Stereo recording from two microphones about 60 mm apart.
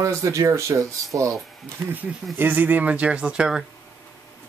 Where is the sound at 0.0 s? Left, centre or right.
Right.